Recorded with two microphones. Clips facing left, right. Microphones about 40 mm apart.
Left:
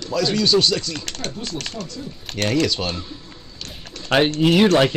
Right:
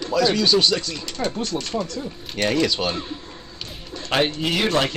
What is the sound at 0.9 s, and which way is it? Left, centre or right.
Speech, left.